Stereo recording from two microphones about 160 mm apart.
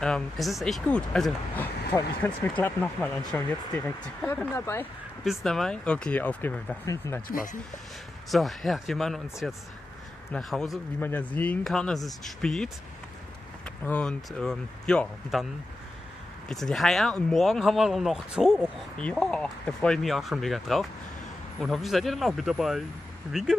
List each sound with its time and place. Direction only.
0.0 s speech: centre (ahead or behind)
5.2 s speech: centre (ahead or behind)
7.2 s speech: 60° left (ahead or behind)
8.3 s speech: centre (ahead or behind)
16.4 s speech: 5° left (ahead or behind)